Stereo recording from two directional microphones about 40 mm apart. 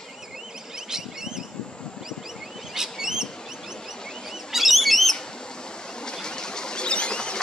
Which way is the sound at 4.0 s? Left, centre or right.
Centre.